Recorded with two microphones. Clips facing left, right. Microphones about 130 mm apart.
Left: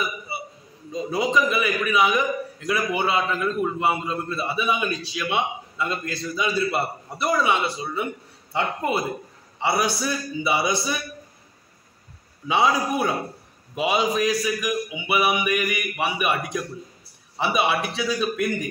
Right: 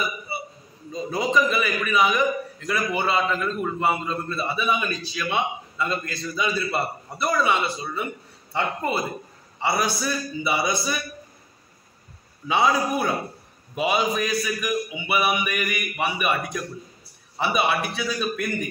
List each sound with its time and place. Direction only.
0.9 s a man's voice: 10° left (ahead or behind)
12.4 s a man's voice: 15° left (ahead or behind)